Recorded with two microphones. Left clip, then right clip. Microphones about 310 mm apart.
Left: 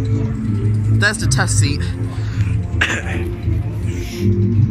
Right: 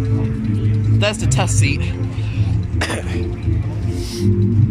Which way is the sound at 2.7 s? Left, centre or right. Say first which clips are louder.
Left 5 dB; centre.